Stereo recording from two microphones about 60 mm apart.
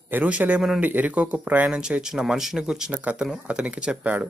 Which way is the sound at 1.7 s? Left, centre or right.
Centre.